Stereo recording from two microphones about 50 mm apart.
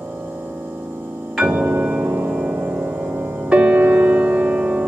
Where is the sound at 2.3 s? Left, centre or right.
Right.